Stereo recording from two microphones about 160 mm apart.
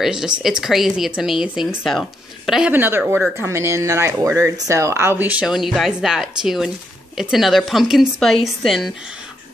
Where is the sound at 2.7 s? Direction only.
10° right (ahead or behind).